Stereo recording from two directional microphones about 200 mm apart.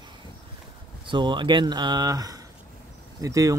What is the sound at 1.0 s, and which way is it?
Speech, 25° right (ahead or behind).